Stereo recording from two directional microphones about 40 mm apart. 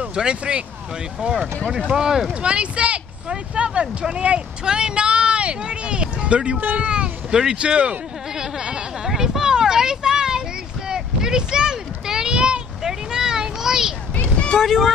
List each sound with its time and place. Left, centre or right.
0.1 s speech: right
1.9 s speech: centre
2.4 s speech: right
8.4 s a sound: right
14.6 s speech: centre